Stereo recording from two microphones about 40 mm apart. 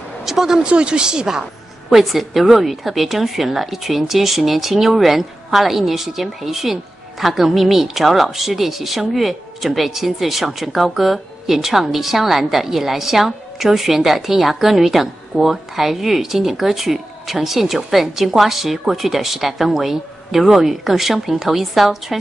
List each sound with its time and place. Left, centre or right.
0.2 s speech: centre
0.7 s speech: right
2.0 s speech: centre